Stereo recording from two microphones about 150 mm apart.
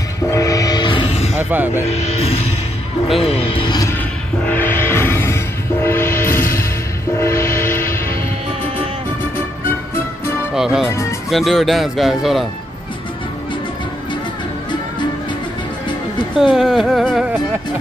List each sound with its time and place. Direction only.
0.3 s train: 20° left (ahead or behind); by 1.3 s 40° left (ahead or behind)
1.3 s speech: 10° right (ahead or behind)
1.9 s speech: 45° left (ahead or behind)
4.5 s music: 15° left (ahead or behind)
7.2 s train: 20° left (ahead or behind)
7.9 s music: 15° left (ahead or behind)
10.5 s speech: 5° right (ahead or behind)
10.9 s music: 20° left (ahead or behind)
11.2 s speech: centre (ahead or behind)
16.3 s speech: 5° right (ahead or behind)